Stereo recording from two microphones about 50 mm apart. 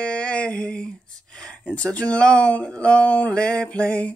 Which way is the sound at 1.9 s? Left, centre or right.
Left.